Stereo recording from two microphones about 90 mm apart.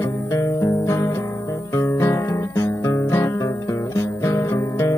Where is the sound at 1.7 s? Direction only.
30° left (ahead or behind).